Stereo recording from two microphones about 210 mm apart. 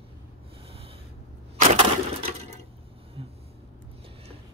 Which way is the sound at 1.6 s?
30° right (ahead or behind).